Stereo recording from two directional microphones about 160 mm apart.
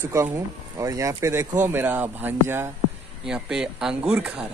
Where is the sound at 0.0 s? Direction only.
15° right (ahead or behind).